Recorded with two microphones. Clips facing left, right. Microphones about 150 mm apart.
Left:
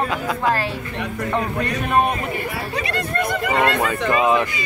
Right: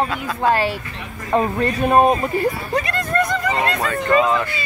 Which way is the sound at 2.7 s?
45° right (ahead or behind).